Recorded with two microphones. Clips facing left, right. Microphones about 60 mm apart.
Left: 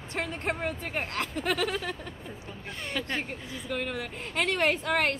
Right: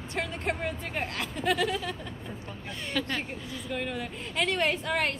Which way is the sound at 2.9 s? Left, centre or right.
Centre.